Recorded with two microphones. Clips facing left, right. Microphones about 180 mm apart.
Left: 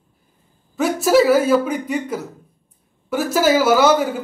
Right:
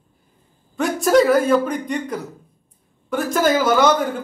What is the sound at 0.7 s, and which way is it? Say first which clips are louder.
A woman's voice: left 1 dB; 5° left (ahead or behind).